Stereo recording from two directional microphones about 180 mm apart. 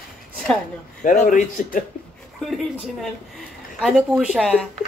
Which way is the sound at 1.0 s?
45° left (ahead or behind).